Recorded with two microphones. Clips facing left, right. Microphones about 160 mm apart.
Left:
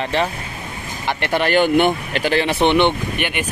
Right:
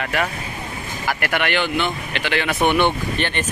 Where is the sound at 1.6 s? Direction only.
50° left (ahead or behind); by 3.4 s 10° left (ahead or behind).